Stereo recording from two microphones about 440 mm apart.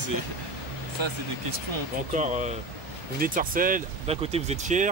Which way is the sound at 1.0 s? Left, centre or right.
Right.